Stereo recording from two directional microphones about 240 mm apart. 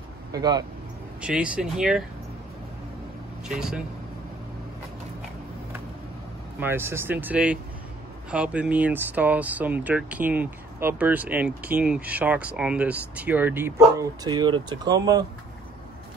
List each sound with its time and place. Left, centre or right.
0.3 s speech: centre
1.2 s speech: centre
3.4 s speech: centre
6.6 s speech: centre